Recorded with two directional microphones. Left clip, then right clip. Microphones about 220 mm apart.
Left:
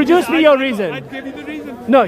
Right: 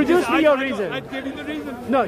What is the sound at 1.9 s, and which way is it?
Speech, 50° left (ahead or behind).